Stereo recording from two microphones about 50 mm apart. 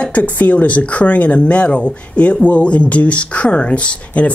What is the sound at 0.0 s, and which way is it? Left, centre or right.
Speech, left.